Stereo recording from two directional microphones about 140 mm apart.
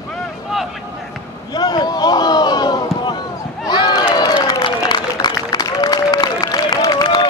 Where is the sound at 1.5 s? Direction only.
30° left (ahead or behind).